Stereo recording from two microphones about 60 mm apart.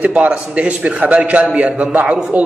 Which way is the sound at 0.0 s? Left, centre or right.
Right.